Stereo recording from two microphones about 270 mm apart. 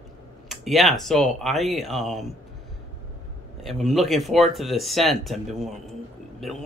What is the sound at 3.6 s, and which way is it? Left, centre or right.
Speech, centre.